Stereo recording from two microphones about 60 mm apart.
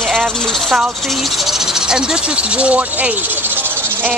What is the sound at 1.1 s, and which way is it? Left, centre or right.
Speech, centre.